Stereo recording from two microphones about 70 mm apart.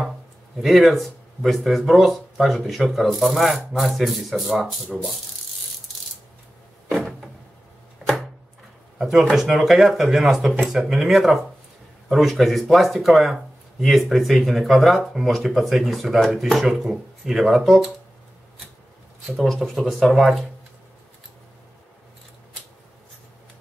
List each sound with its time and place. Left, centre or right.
0.6 s speech: centre
8.9 s speech: centre
19.2 s speech: centre